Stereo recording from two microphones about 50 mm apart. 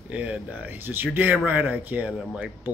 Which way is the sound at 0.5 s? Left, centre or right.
Right.